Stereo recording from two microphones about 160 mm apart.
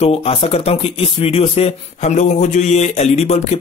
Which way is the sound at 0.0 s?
40° left (ahead or behind).